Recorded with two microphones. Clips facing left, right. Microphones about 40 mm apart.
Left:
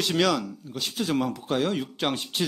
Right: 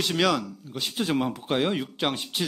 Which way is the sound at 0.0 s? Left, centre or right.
Centre.